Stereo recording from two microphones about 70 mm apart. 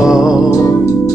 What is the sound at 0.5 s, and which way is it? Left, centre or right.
Music, left.